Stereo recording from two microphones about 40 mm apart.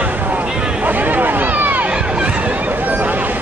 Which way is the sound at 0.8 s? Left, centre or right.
Right.